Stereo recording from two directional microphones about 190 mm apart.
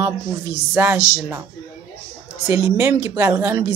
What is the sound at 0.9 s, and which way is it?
Speech, 15° left (ahead or behind).